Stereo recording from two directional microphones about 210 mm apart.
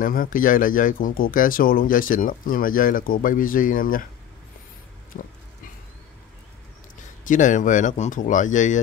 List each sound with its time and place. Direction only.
0.0 s speech: 40° left (ahead or behind)
7.2 s speech: 35° left (ahead or behind)